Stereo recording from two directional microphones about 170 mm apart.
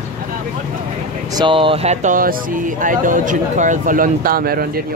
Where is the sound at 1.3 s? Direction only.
30° right (ahead or behind); by 4.8 s 60° right (ahead or behind).